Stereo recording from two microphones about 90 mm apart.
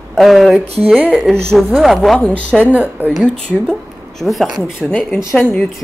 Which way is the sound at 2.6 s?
20° right (ahead or behind).